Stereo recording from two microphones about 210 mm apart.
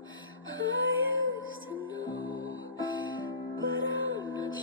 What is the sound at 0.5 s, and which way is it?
Music, 70° right (ahead or behind).